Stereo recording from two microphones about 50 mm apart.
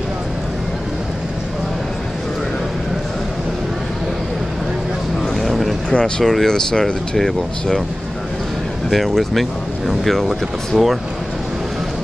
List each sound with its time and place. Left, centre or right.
5.3 s vehicle: centre
5.9 s a sound: centre
6.3 s speech: centre
8.9 s speech: centre